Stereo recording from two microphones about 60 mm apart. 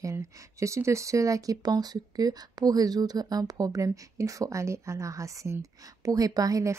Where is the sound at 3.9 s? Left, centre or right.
Right.